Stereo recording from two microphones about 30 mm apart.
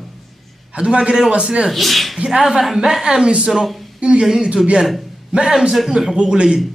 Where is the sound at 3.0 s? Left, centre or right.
Right.